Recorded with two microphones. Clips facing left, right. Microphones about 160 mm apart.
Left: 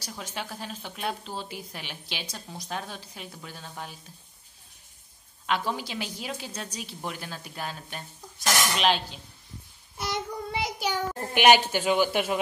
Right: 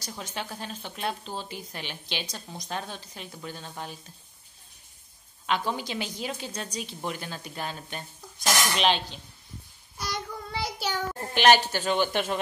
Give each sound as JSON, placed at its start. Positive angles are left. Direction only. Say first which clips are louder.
{"t": 0.2, "sound": "a woman's voice", "louder": "even", "side_deg": 5}
{"t": 5.5, "sound": "a woman's voice", "louder": "even", "side_deg": 5}
{"t": 9.9, "sound": "child singing", "louder": "left 3 dB", "side_deg": 20}
{"t": 11.7, "sound": "speech", "louder": "left 2 dB", "side_deg": 10}